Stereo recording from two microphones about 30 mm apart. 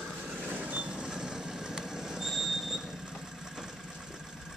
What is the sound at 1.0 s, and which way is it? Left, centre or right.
Vehicle, right.